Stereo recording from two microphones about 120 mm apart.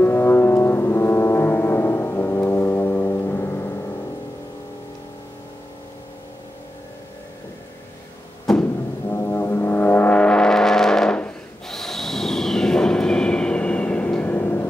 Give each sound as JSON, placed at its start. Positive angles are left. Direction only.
{"t": 0.0, "sound": "music", "side_deg": 20}
{"t": 8.5, "sound": "a sound", "side_deg": 0}
{"t": 9.1, "sound": "music", "side_deg": 20}